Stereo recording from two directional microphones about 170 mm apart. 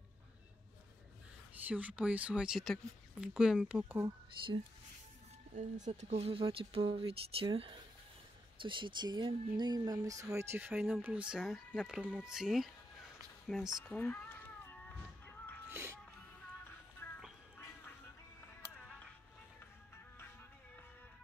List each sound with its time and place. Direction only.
1.5 s speech: 10° right (ahead or behind)
5.5 s speech: 45° right (ahead or behind); by 13.8 s centre (ahead or behind)
13.8 s music: 10° left (ahead or behind)
17.0 s music: 10° left (ahead or behind)